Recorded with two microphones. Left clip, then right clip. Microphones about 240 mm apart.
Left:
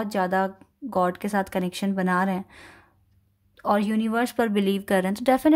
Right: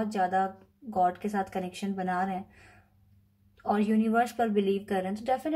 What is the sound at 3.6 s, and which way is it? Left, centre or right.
Speech, left.